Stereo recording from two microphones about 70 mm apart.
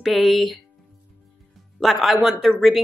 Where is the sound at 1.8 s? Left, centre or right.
Centre.